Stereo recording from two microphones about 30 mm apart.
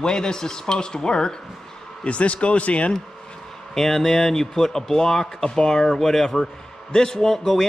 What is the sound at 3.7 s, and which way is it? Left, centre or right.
A man's voice, centre.